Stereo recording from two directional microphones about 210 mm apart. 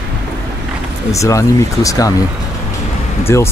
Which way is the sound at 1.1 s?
15° left (ahead or behind).